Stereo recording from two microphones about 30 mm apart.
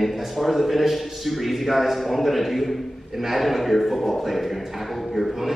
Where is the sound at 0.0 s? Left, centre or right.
Centre.